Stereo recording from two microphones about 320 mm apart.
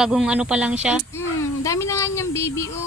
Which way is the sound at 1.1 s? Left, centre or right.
Centre.